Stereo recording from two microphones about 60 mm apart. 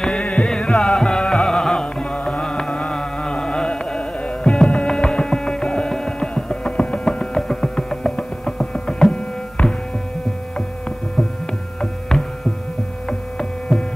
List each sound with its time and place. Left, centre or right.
0.0 s music: centre
11.8 s hum: centre
13.4 s hum: centre